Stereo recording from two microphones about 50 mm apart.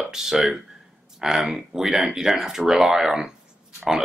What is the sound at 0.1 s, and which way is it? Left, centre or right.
Speech, centre.